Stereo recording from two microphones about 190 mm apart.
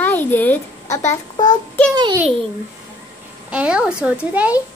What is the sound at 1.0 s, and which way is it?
Speech, 20° left (ahead or behind).